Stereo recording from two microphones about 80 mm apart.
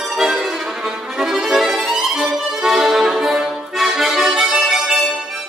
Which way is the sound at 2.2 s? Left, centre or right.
Centre.